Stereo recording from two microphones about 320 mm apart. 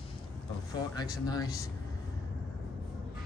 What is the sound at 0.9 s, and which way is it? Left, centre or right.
Speech, centre.